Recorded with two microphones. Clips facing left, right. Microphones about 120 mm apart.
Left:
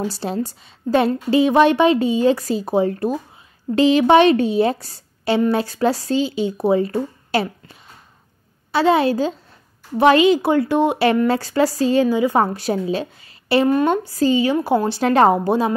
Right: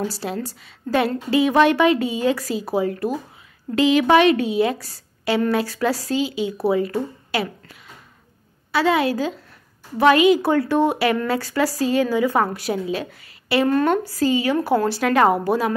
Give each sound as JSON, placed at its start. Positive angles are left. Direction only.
{"t": 0.0, "sound": "a woman's voice", "side_deg": 25}
{"t": 8.7, "sound": "a woman's voice", "side_deg": 30}